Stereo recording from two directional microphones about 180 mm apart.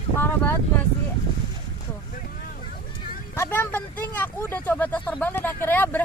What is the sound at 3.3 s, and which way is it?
Speech, 15° left (ahead or behind).